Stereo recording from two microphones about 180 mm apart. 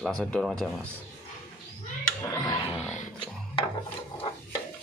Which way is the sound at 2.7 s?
40° left (ahead or behind).